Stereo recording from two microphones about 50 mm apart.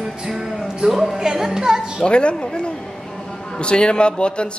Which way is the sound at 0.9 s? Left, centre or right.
Centre.